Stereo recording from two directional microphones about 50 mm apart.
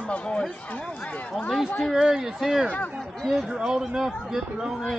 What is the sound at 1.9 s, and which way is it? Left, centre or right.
Speech, centre.